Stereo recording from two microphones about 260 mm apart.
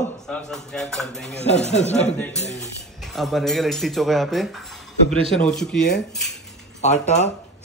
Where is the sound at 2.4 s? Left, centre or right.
Left.